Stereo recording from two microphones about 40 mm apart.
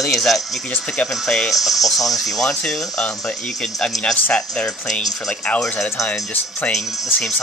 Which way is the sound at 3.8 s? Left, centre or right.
Left.